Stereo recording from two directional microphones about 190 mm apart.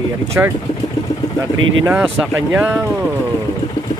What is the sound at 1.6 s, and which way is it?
Speech, 90° right.